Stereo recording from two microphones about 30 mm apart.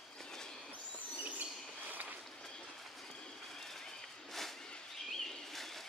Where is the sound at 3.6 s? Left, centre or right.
Centre.